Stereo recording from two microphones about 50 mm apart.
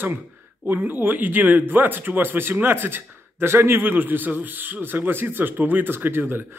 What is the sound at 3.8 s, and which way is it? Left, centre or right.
Speech, right.